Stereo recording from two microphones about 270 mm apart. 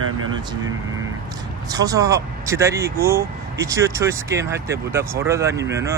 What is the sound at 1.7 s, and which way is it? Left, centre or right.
Speech, centre.